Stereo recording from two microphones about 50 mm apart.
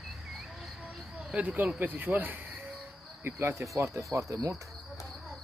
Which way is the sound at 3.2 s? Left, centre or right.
Right.